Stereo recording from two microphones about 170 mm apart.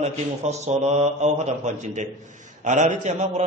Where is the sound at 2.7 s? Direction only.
45° right (ahead or behind).